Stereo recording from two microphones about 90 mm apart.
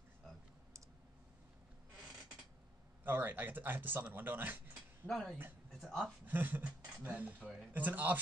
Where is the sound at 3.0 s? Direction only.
20° right (ahead or behind).